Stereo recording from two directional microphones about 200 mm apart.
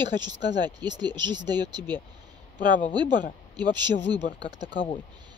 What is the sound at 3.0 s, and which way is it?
Speech, 20° right (ahead or behind).